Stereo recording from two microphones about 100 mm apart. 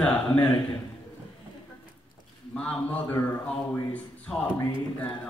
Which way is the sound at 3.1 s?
20° left (ahead or behind).